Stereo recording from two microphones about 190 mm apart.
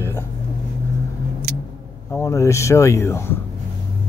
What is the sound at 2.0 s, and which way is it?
Speech, 15° left (ahead or behind).